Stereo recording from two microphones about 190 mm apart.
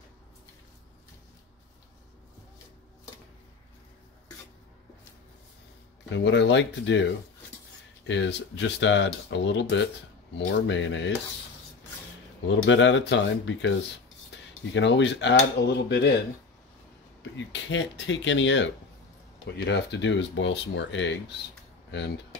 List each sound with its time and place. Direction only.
6.0 s speech: 75° left (ahead or behind)
12.4 s speech: 75° left (ahead or behind)
17.2 s speech: 70° left (ahead or behind)
19.5 s speech: 65° left (ahead or behind)